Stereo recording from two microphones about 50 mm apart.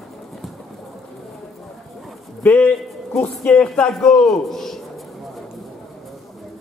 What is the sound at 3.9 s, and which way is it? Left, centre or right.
Speech, centre.